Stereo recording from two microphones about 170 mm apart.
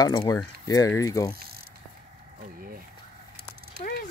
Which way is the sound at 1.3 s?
65° right (ahead or behind).